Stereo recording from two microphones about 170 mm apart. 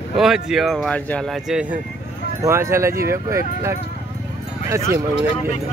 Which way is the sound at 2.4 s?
15° right (ahead or behind).